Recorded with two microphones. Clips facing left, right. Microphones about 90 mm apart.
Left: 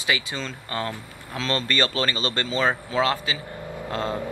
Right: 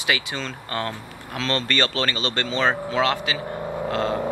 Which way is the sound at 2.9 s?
30° left (ahead or behind).